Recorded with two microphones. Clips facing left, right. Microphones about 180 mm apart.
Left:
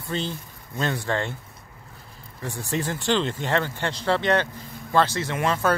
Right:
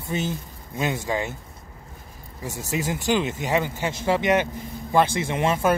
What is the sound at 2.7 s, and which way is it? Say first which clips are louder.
Speech: right 1 dB; 10° right (ahead or behind).